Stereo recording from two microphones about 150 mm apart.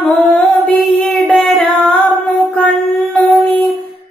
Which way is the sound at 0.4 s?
Centre (ahead or behind).